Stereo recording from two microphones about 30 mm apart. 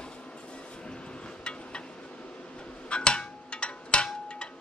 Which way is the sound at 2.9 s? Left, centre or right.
Left.